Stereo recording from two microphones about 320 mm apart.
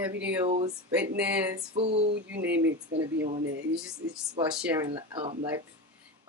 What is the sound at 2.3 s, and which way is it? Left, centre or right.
Speech, centre.